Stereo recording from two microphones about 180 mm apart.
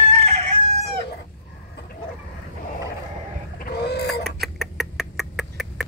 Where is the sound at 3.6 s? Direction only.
60° left (ahead or behind).